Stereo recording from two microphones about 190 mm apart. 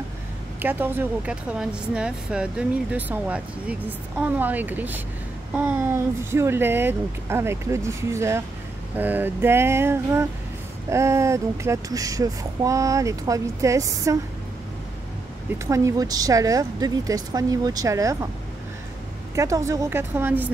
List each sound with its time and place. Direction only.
0.6 s speech: 10° right (ahead or behind)
15.6 s a woman's voice: 15° right (ahead or behind)
19.3 s speech: 15° right (ahead or behind)